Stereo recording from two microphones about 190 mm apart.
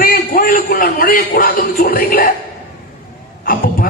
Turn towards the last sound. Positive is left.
turn(degrees=45)  # may be behind; listen again after turning